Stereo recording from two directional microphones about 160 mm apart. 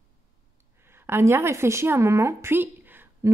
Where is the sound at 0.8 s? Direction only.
15° right (ahead or behind).